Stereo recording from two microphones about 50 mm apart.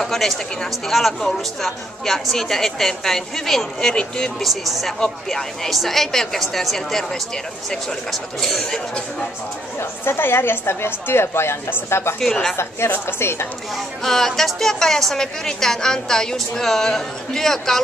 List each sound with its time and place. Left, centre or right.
0.0 s speech: centre
4.4 s speech: centre
5.0 s speech: centre
9.8 s a woman's voice: left
13.7 s speech: centre